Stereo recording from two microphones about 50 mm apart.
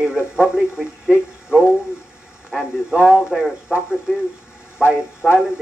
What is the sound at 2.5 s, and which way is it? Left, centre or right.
Speech, centre.